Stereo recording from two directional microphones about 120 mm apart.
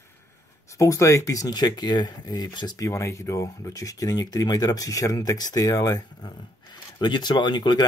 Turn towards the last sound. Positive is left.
turn(degrees=35)  # may be behind; listen again after turning